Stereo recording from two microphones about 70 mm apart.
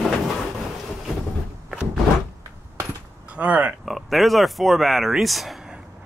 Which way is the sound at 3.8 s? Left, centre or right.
Centre.